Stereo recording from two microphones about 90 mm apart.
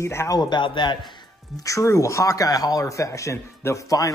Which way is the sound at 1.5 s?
35° left (ahead or behind).